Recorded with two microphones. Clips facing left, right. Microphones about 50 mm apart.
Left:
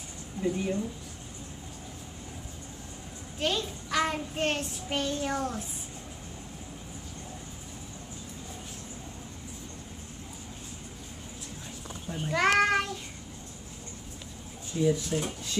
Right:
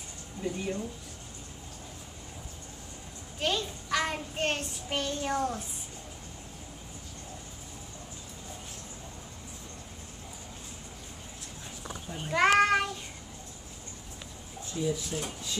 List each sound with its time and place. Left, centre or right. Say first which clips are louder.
0.4 s speech: left 4 dB; centre
3.3 s child singing: left 1 dB; centre
12.4 s child singing: right 1 dB; centre
14.7 s speech: left 5 dB; centre
15.1 s speech: left 5 dB; left